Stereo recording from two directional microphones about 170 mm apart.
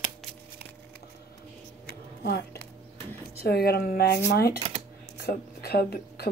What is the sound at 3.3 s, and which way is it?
A woman's voice, 65° left (ahead or behind).